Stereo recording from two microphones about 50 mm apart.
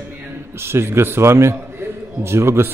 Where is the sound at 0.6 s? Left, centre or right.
Right.